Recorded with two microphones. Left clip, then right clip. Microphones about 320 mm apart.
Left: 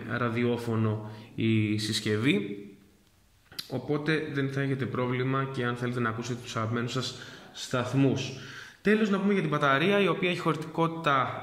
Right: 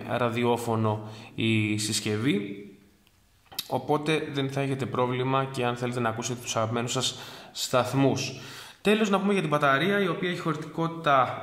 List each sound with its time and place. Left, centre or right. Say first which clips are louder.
0.1 s a man's voice: right 4 dB; centre
3.9 s a man's voice: right 2 dB; centre